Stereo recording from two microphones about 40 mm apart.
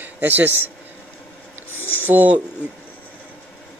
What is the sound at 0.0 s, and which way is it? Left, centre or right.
Speech, right.